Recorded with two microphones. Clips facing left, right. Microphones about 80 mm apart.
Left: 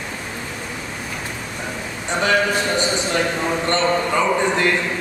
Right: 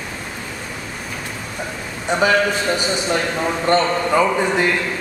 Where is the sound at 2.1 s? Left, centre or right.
Centre.